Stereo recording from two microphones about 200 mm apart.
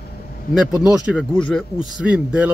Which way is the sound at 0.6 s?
5° right (ahead or behind).